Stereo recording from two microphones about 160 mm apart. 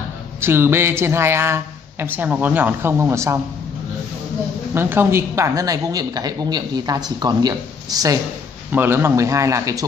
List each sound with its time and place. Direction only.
0.4 s speech: 15° right (ahead or behind)
4.7 s speech: 15° right (ahead or behind)